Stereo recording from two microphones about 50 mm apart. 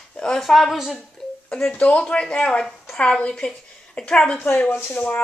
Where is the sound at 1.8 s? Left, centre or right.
Left.